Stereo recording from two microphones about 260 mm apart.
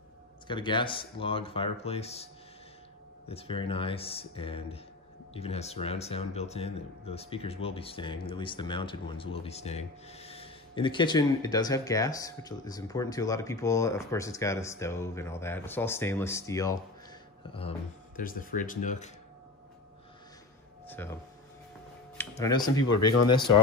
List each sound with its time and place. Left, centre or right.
0.5 s speech: centre
3.3 s speech: left
17.6 s speech: left
20.8 s speech: centre
22.4 s speech: centre
22.8 s speech: left